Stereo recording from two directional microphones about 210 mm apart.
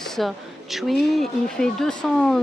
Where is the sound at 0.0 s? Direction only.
Centre (ahead or behind).